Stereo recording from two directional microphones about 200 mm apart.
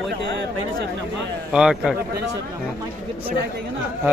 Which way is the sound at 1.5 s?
5° right (ahead or behind).